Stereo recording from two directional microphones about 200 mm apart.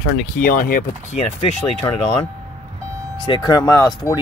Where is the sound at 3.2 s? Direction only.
20° left (ahead or behind).